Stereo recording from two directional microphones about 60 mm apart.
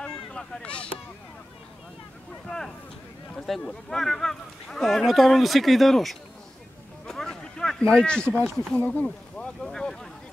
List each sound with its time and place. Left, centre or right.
0.0 s a sound: centre
3.3 s speech: centre
7.1 s a sound: centre
8.5 s speech: centre
8.7 s speech: left
9.0 s speech: centre